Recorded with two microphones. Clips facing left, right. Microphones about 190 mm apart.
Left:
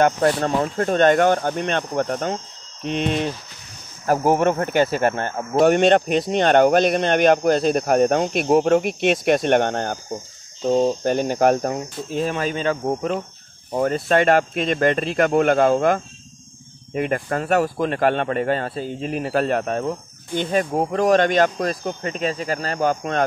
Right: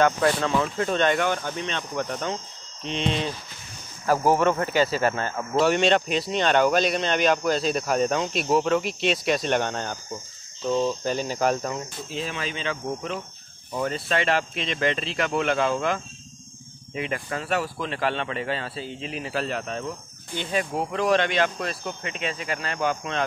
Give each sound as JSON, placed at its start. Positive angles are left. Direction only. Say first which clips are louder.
{"t": 0.0, "sound": "speech", "louder": "left 3 dB", "side_deg": 40}
{"t": 4.4, "sound": "speech", "louder": "left 3 dB", "side_deg": 50}